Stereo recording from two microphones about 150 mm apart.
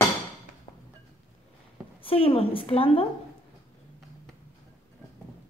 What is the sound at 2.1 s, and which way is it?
Speech, 40° left (ahead or behind).